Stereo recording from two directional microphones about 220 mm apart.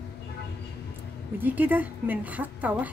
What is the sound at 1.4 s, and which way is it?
A woman's voice, 5° right (ahead or behind).